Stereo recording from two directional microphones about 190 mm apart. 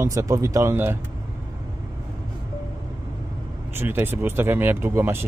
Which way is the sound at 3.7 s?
10° right (ahead or behind).